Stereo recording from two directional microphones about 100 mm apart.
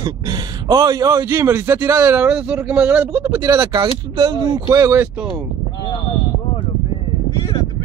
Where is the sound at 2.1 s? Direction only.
15° right (ahead or behind).